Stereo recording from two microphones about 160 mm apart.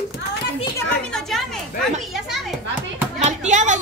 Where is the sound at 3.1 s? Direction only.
45° right (ahead or behind).